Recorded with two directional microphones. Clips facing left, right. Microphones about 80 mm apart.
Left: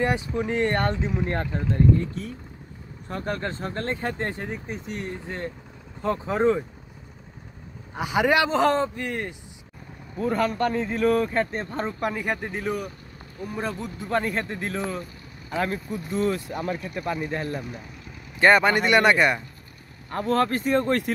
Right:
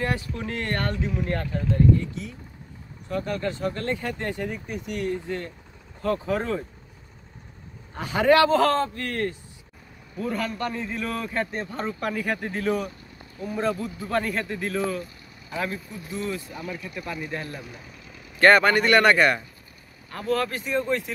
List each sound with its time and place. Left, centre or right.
0.0 s speech: centre
7.9 s a man's voice: centre
10.1 s speech: left
12.0 s a man's voice: left
14.0 s speech: left
15.5 s speech: left
16.7 s speech: left
18.4 s a man's voice: centre
20.1 s speech: left